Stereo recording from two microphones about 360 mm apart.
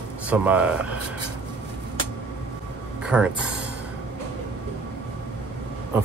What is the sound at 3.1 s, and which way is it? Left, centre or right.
Speech, centre.